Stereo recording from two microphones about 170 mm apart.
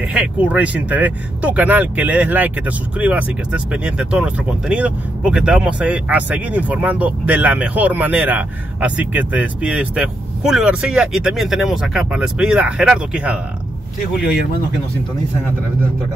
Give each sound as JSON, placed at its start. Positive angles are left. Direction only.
{"t": 0.1, "sound": "speech", "side_deg": -10}
{"t": 14.1, "sound": "speech", "side_deg": 65}